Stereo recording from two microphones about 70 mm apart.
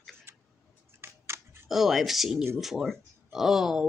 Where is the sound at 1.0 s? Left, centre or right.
Right.